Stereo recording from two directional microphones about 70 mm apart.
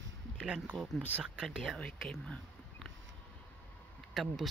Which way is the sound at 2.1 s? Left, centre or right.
Centre.